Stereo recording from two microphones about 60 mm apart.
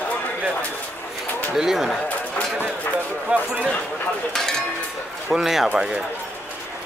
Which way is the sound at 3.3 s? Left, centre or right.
Right.